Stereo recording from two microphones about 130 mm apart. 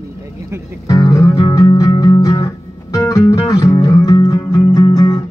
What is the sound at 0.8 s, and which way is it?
Music, 25° left (ahead or behind).